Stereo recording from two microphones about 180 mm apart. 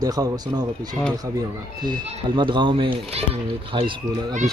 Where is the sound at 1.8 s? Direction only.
25° right (ahead or behind).